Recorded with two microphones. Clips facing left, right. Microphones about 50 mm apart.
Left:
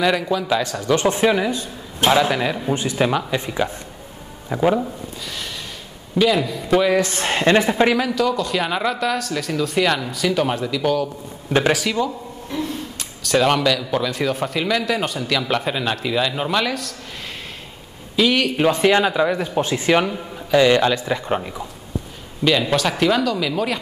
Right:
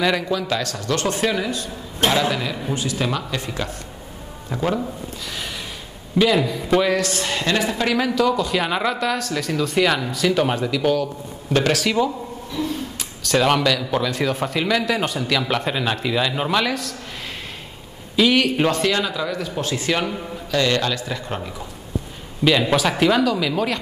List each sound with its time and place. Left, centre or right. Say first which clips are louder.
0.0 s a man's voice: left 1 dB; centre
6.1 s speech: even; centre
7.0 s speech: left 3 dB; left
8.0 s speech: right 1 dB; centre
11.5 s speech: left 1 dB; centre
11.8 s speech: right 2 dB; centre
18.1 s speech: right 1 dB; centre
18.7 s speech: left 4 dB; left
22.4 s speech: right 1 dB; centre